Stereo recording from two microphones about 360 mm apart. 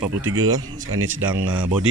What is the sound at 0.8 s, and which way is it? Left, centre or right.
Speech, right.